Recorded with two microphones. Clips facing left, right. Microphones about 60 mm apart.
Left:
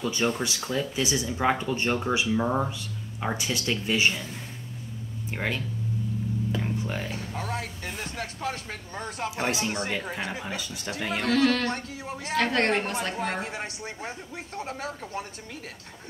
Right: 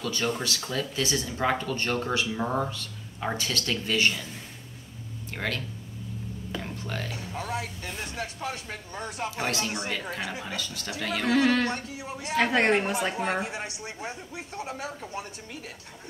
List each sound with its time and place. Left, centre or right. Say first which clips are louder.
0.0 s speech: left 2 dB; left
5.3 s speech: left 1 dB; centre
6.6 s music: left 4 dB; centre
7.1 s a man's voice: left 1 dB; left
7.5 s vehicle: even; left
8.2 s a sound: left 2 dB; left
8.9 s a man's voice: left 1 dB; left
9.3 s speech: left 3 dB; centre
11.2 s speech: even; centre
11.7 s a man's voice: left 1 dB; left
12.4 s speech: right 2 dB; centre
13.4 s a man's voice: even; left